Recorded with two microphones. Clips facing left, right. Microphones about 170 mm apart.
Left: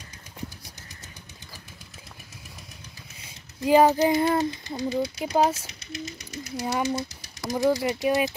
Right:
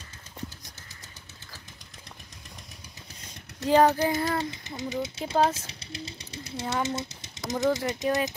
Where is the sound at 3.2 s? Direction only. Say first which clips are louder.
Left 3 dB; 10° left (ahead or behind).